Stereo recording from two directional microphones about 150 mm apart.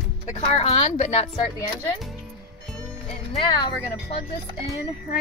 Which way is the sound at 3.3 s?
40° left (ahead or behind).